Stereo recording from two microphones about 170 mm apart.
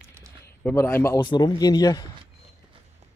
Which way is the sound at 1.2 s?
25° left (ahead or behind).